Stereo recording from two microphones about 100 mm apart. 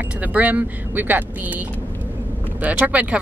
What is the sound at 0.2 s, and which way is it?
Speech, 15° right (ahead or behind).